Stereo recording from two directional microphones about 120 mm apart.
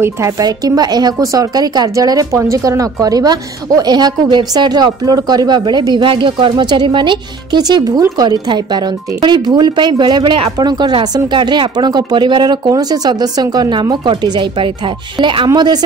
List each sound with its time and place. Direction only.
0.0 s speech: 30° right (ahead or behind)